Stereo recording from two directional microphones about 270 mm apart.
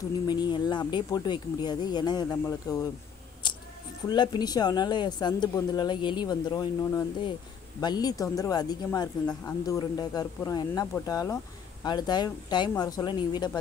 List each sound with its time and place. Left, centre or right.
0.3 s speech: centre
4.1 s speech: centre